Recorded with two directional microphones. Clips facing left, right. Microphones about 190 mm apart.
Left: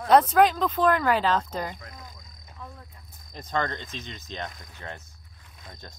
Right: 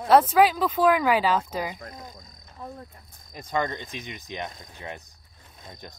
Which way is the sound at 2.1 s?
35° right (ahead or behind).